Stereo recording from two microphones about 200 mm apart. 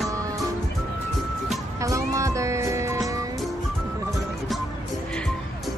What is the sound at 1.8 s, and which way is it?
Music, 15° right (ahead or behind).